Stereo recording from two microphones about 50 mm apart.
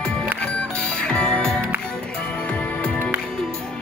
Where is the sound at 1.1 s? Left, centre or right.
Left.